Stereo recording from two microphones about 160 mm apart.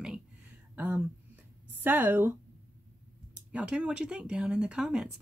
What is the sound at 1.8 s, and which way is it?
Speech, 10° right (ahead or behind).